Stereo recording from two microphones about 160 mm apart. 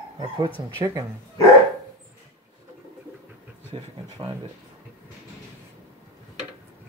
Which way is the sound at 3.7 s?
30° right (ahead or behind).